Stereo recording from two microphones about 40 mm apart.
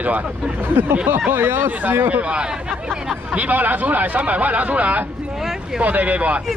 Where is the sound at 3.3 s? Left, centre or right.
Right.